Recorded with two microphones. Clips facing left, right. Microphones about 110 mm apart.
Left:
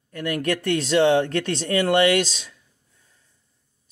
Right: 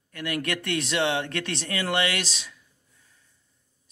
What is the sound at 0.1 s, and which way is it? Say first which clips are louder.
Speech: left 5 dB; 35° left (ahead or behind).